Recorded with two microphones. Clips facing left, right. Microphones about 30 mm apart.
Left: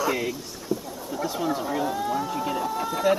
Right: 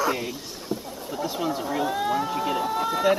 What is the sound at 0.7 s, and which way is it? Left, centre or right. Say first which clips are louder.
Fowl: left 2 dB; right.